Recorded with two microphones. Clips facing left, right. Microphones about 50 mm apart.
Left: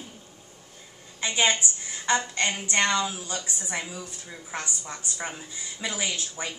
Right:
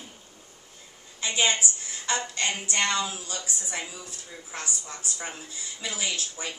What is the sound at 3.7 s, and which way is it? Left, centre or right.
Speech, centre.